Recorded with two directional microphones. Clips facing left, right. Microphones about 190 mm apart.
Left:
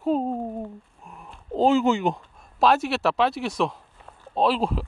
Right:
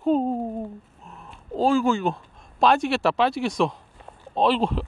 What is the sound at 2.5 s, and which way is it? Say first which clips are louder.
Speech: right 1 dB; 5° left (ahead or behind).